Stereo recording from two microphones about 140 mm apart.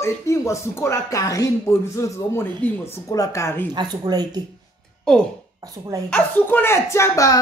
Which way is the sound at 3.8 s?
30° right (ahead or behind).